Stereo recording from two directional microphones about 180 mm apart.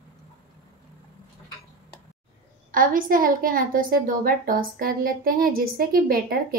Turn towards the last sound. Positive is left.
turn(degrees=-55)  # may be behind; listen again after turning